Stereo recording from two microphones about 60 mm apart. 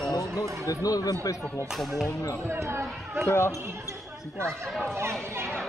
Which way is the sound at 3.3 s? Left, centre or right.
Left.